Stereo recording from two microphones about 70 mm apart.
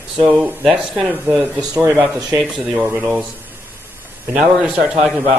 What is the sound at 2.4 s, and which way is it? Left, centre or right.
Speech, centre.